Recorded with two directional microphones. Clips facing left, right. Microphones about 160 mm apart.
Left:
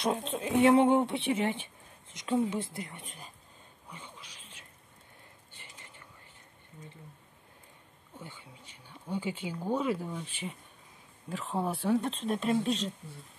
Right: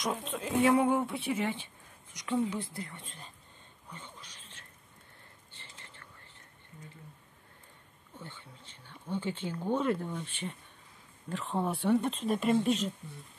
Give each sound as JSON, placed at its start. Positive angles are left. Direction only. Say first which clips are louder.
{"t": 0.0, "sound": "speech", "louder": "left 3 dB", "side_deg": 25}
{"t": 5.5, "sound": "whispering", "louder": "even", "side_deg": 15}
{"t": 8.2, "sound": "speech", "louder": "even", "side_deg": 15}